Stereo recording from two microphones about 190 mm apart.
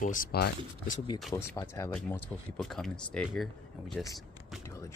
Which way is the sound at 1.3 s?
15° left (ahead or behind).